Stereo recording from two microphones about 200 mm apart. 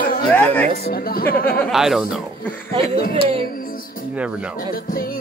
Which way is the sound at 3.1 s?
25° right (ahead or behind).